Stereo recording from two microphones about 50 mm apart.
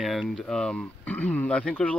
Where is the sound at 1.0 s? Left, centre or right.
Left.